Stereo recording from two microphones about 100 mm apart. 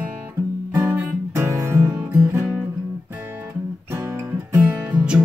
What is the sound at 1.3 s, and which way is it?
Music, 30° right (ahead or behind).